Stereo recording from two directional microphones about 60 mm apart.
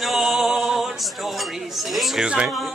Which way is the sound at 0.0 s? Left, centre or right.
Centre.